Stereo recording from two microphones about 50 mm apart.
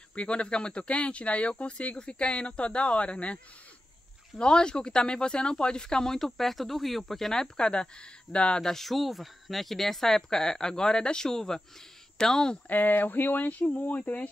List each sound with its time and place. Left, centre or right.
0.1 s speech: left
4.4 s speech: centre
8.6 s speech: centre
12.6 s speech: left